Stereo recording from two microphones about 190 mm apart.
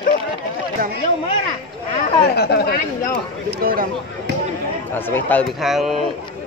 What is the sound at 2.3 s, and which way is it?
Speech, 55° left (ahead or behind).